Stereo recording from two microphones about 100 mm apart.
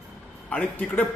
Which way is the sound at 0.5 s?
20° left (ahead or behind).